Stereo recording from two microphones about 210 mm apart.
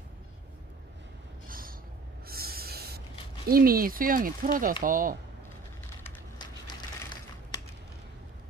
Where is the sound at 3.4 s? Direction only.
45° right (ahead or behind).